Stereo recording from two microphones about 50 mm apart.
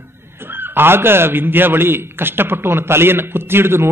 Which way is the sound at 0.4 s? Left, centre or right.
Right.